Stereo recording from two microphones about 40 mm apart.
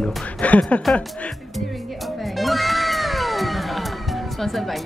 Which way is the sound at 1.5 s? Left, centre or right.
Centre.